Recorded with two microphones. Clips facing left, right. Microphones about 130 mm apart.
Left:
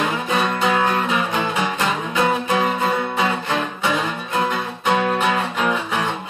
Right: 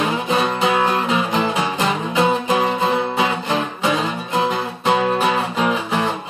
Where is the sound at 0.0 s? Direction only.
20° right (ahead or behind).